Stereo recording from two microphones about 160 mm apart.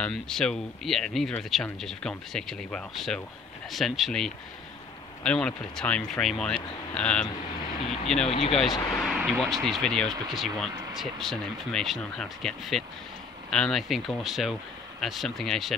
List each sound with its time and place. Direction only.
0.0 s speech: 5° left (ahead or behind)
8.3 s speech: 40° left (ahead or behind)
8.9 s speech: centre (ahead or behind)